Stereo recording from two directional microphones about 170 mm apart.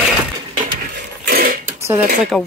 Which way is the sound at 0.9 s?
65° right (ahead or behind).